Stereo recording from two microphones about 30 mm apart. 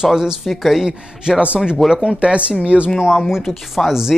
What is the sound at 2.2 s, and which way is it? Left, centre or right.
Speech, right.